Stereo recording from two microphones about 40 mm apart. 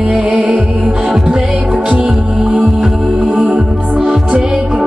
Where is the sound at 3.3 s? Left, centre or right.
Right.